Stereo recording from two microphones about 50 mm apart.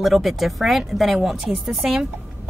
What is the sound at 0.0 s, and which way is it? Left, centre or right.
A woman's voice, centre.